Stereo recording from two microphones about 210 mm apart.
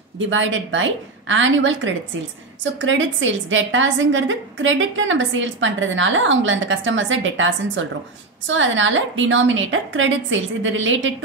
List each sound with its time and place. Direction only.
0.2 s a woman's voice: 65° right (ahead or behind)